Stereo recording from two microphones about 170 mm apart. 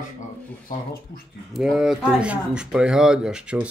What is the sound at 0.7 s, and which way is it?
Speech, 65° left (ahead or behind).